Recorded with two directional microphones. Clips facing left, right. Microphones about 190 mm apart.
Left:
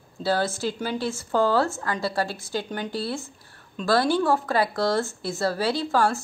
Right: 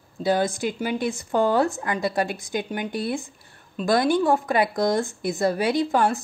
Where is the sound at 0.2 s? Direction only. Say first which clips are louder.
Right 2 dB; 15° right (ahead or behind).